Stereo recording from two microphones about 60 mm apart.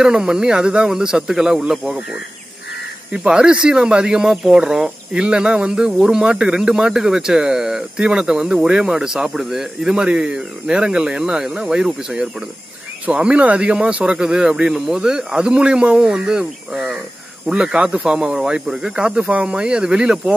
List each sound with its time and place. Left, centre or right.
0.0 s speech: centre
3.1 s speech: centre